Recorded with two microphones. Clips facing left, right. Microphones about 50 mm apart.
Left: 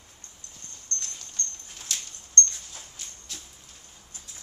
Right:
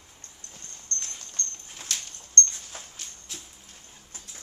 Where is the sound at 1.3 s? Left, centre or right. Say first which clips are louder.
Even; right.